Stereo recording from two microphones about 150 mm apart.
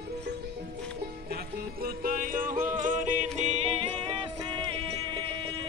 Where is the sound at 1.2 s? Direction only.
90° right.